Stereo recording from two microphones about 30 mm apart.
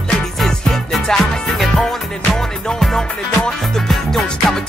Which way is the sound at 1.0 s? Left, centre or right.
Left.